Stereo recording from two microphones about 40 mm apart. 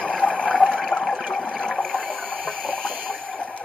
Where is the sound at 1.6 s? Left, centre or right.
Left.